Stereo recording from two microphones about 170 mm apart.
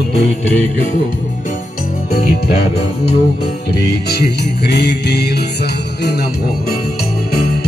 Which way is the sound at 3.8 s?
70° left (ahead or behind).